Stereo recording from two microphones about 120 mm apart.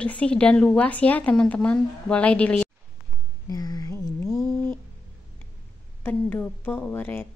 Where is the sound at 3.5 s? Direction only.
30° left (ahead or behind).